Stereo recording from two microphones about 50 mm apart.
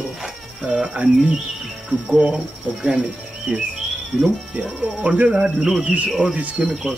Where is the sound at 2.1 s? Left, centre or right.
Centre.